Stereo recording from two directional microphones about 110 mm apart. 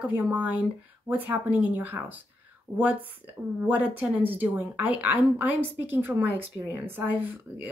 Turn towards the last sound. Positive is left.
turn(degrees=-15)  # may be behind; listen again after turning